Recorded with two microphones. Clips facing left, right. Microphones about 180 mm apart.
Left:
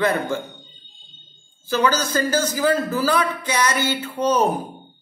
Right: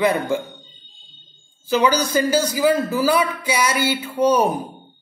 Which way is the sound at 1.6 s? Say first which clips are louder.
Right 2 dB; 15° right (ahead or behind).